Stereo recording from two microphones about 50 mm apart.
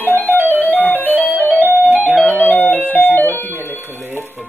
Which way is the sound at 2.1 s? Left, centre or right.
Left.